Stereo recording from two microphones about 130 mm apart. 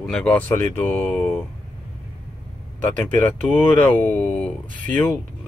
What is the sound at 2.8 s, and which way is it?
Speech, 15° left (ahead or behind).